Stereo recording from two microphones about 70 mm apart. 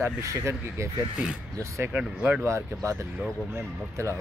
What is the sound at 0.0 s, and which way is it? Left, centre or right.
Speech, right.